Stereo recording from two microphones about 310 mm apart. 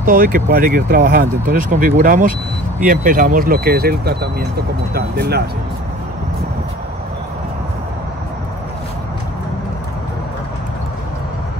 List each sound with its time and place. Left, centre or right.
0.0 s speech: right